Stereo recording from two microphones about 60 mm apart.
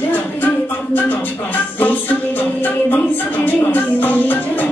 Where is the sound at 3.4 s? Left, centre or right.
Left.